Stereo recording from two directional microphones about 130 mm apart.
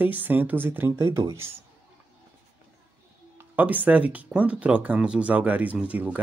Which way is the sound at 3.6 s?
10° right (ahead or behind).